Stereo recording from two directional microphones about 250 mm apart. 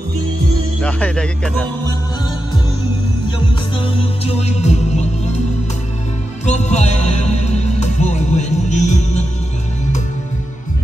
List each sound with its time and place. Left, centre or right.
0.7 s music: centre
3.8 s music: left
6.4 s music: left